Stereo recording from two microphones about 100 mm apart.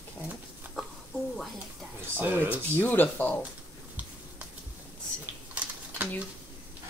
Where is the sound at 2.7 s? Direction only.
20° left (ahead or behind).